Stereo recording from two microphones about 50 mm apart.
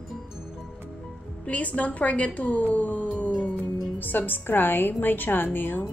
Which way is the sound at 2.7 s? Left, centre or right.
Left.